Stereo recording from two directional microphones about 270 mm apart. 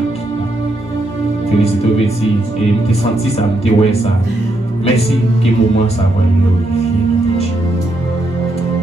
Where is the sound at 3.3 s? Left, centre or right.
Left.